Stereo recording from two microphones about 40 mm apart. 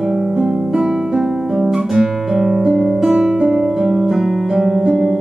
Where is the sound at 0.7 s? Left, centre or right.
Centre.